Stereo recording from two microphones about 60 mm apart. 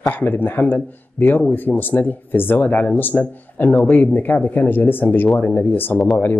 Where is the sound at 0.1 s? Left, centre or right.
Left.